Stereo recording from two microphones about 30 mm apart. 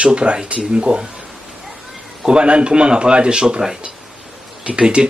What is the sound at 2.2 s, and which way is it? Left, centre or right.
Speech, right.